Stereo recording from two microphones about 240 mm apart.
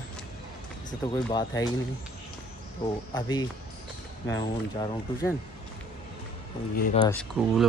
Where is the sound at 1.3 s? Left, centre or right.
Centre.